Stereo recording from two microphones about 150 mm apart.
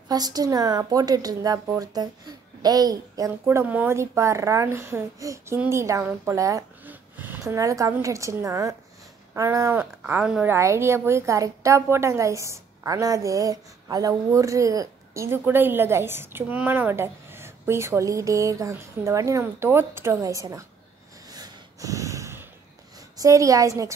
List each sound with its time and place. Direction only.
0.1 s a woman's voice: 25° right (ahead or behind)
21.3 s snort: 25° right (ahead or behind)
22.9 s a woman's voice: 25° right (ahead or behind)